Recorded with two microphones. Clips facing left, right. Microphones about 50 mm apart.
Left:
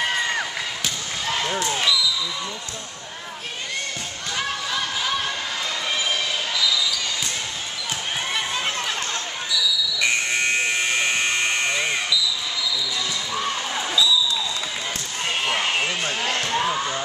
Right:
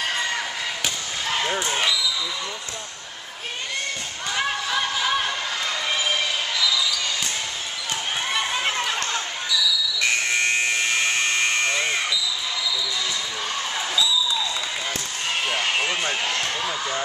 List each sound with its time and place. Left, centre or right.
1.3 s basketball bounce: centre
4.3 s a sound: centre
8.3 s a sound: centre
10.5 s buzzer: centre
15.9 s basketball bounce: centre
16.3 s basketball bounce: left